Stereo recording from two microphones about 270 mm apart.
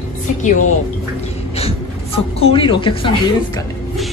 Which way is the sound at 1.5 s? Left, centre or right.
Left.